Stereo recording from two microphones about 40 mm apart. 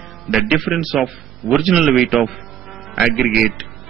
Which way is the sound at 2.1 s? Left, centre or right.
Centre.